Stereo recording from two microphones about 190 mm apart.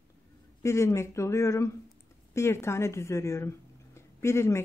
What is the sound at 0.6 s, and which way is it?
A woman's voice, 15° left (ahead or behind).